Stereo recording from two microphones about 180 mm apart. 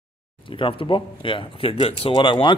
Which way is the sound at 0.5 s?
30° left (ahead or behind).